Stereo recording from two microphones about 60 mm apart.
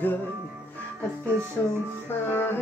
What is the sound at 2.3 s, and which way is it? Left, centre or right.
Music, left.